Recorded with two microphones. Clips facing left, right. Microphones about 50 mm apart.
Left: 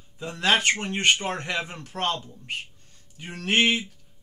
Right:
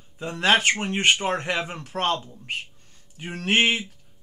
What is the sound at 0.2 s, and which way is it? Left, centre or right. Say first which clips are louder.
A man's voice: right 2 dB; centre.